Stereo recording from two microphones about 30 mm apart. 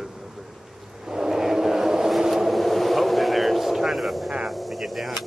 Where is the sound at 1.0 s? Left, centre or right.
Centre.